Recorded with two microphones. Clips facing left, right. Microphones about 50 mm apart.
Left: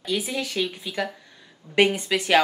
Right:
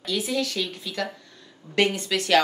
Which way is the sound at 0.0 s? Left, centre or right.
Centre.